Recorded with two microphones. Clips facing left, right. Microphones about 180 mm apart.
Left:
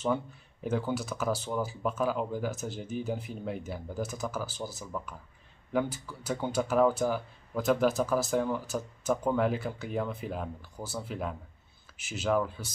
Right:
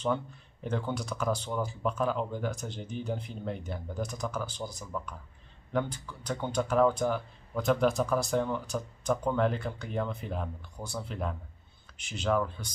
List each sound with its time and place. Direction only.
0.7 s speech: 5° left (ahead or behind)